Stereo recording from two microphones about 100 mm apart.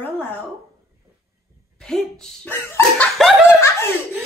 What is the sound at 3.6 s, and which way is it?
Laughter, 25° left (ahead or behind).